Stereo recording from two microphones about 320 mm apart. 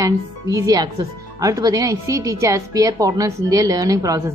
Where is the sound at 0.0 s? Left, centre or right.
Centre.